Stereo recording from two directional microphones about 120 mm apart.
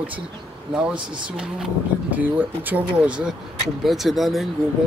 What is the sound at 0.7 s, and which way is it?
Speech, 10° right (ahead or behind).